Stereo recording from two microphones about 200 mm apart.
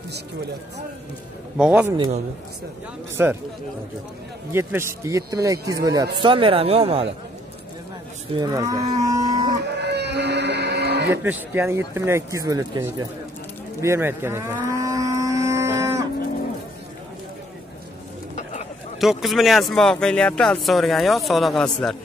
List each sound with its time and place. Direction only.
1.6 s speech: 5° right (ahead or behind)
3.2 s speech: 10° right (ahead or behind)
4.5 s speech: 10° right (ahead or behind); by 7.2 s 30° right (ahead or behind)
8.4 s cattle: 15° right (ahead or behind)
9.8 s a sound: 55° right (ahead or behind)
11.2 s speech: 10° right (ahead or behind)
13.7 s livestock: 15° right (ahead or behind)
18.3 s bird: 35° left (ahead or behind)
18.9 s speech: centre (ahead or behind)